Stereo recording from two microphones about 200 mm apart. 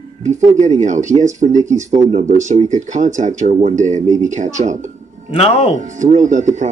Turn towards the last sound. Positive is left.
turn(degrees=-35)  # may be behind; listen again after turning